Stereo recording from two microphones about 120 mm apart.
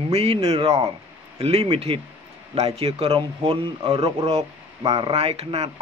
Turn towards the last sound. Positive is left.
turn(degrees=-60)  # may be behind; listen again after turning